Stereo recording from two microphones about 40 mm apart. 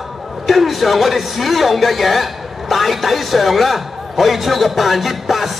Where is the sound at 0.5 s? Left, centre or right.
Centre.